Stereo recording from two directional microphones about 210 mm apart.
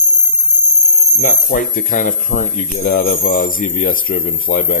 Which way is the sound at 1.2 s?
45° left (ahead or behind).